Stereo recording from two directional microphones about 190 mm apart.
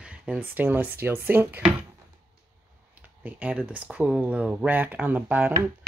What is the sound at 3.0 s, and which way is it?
Speech, 10° right (ahead or behind).